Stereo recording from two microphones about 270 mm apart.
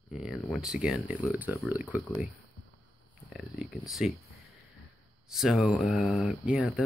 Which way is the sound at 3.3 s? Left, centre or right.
Centre.